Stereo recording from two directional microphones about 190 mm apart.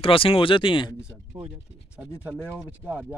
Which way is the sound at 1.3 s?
20° right (ahead or behind).